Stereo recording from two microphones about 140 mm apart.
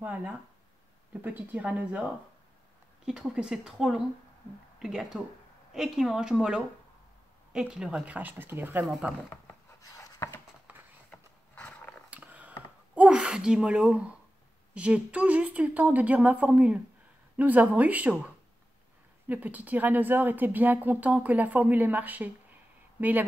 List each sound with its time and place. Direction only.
0.0 s speech: 10° right (ahead or behind)
3.1 s speech: 5° right (ahead or behind)
9.5 s writing: 25° left (ahead or behind)
11.1 s horse: 10° left (ahead or behind)
12.1 s gasp: 10° right (ahead or behind)
14.7 s speech: 10° right (ahead or behind)